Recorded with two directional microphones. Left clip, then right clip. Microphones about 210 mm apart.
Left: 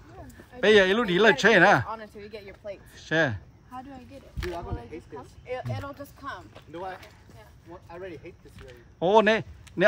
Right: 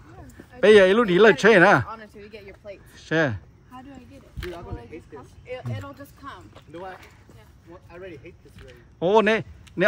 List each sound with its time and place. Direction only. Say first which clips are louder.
0.6 s speech: right 5 dB; 5° left (ahead or behind)
2.3 s a sound: left 2 dB; 45° left (ahead or behind)
2.9 s a sound: right 2 dB; 5° left (ahead or behind)
4.4 s speech: left 1 dB; 30° left (ahead or behind)
7.9 s speech: even; 40° left (ahead or behind)
9.0 s speech: right 1 dB; 10° left (ahead or behind)